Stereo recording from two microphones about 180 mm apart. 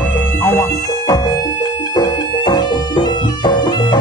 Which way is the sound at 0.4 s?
15° left (ahead or behind).